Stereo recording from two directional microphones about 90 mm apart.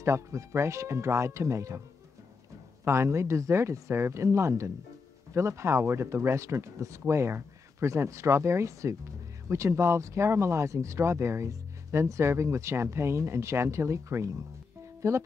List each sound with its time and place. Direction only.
0.0 s speech: 30° right (ahead or behind)
2.8 s speech: 30° right (ahead or behind)